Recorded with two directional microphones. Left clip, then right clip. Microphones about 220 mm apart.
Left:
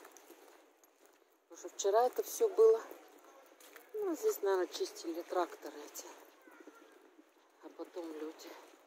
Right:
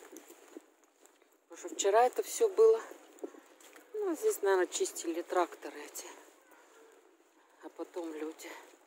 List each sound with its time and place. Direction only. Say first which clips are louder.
1.5 s speech: right 3 dB; 30° right (ahead or behind)
4.0 s speech: right 3 dB; 30° right (ahead or behind)
7.6 s speech: right 4 dB; 40° right (ahead or behind)